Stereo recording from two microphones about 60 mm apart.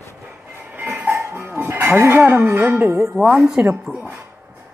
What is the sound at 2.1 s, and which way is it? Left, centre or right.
Music, right.